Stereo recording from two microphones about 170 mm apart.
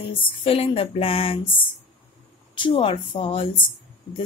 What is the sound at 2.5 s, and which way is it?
Speech, 30° left (ahead or behind).